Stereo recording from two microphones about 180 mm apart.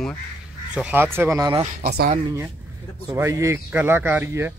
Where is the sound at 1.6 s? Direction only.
40° right (ahead or behind).